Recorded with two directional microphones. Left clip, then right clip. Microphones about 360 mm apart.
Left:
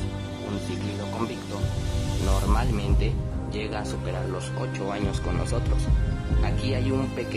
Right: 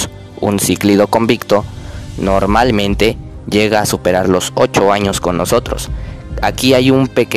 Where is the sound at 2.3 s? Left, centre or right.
Right.